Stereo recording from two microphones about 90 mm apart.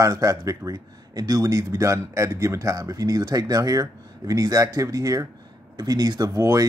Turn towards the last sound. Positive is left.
turn(degrees=-40)  # may be behind; listen again after turning